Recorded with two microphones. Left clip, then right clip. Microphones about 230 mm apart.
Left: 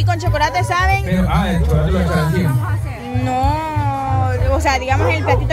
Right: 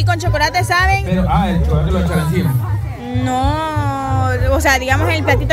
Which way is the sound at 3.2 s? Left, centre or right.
Centre.